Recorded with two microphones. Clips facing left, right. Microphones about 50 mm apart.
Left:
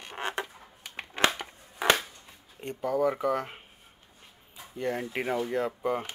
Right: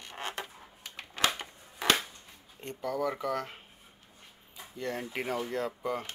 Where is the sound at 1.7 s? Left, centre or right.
Centre.